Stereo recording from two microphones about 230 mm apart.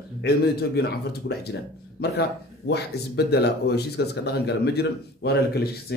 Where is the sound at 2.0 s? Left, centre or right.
Left.